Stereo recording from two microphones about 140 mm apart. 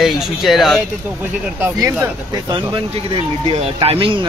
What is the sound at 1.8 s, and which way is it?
Speech, 25° right (ahead or behind).